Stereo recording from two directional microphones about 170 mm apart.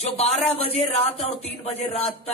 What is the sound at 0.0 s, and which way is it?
Speech, 35° left (ahead or behind).